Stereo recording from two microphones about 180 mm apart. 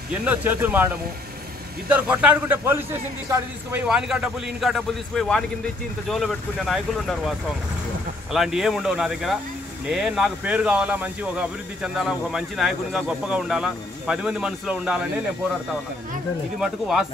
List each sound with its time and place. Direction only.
0.2 s speech: 10° right (ahead or behind)
1.9 s speech: 5° right (ahead or behind)
3.8 s speech: 5° right (ahead or behind)
16.5 s speech: centre (ahead or behind)